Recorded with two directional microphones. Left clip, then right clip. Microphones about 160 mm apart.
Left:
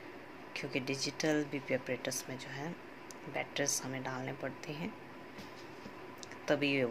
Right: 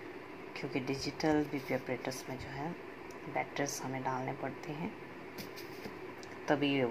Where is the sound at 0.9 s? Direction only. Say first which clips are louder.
Right 2 dB; 15° left (ahead or behind).